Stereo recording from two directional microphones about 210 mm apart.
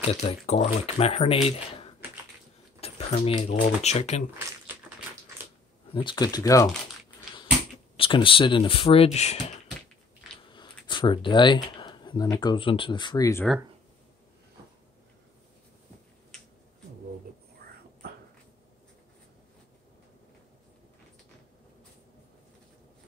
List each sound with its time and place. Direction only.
0.0 s speech: 30° left (ahead or behind)
2.8 s a sound: 30° left (ahead or behind)
3.6 s speech: 30° left (ahead or behind)
5.4 s a sound: 10° right (ahead or behind)
5.9 s speech: 20° left (ahead or behind)
8.0 s speech: 25° left (ahead or behind)
10.4 s speech: 20° left (ahead or behind)